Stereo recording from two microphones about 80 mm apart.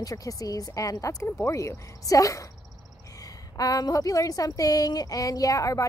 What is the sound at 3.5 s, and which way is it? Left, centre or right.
A woman's voice, left.